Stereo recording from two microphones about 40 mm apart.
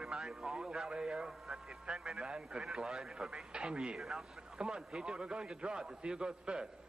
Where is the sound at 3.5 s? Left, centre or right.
Right.